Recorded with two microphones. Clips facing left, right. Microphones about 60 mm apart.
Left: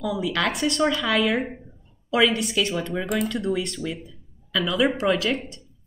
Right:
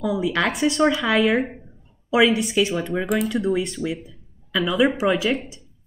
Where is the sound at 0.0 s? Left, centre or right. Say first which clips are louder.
Right 3 dB; centre.